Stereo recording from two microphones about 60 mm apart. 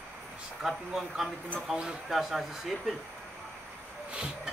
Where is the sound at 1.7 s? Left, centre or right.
Centre.